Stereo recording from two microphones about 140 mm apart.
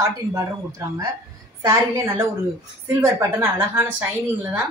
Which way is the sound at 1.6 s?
25° right (ahead or behind).